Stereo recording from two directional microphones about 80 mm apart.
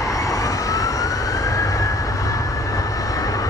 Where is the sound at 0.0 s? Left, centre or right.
Left.